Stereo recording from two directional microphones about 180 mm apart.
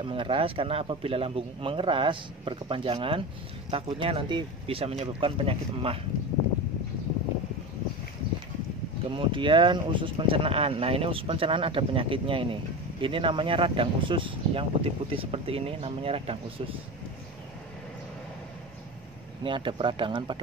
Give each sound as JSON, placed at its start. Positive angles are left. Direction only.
{"t": 0.0, "sound": "speech", "side_deg": -30}
{"t": 9.1, "sound": "speech", "side_deg": -30}
{"t": 19.4, "sound": "speech", "side_deg": -30}